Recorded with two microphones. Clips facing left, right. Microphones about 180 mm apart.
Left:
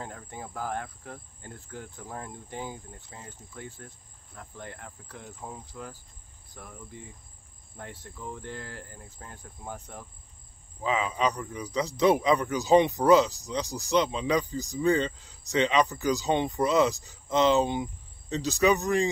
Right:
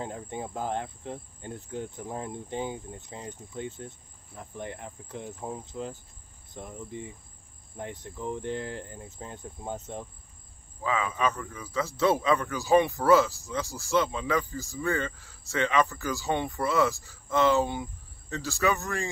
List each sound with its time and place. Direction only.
0.0 s cricket: 20° right (ahead or behind)
10.8 s a man's voice: 20° left (ahead or behind)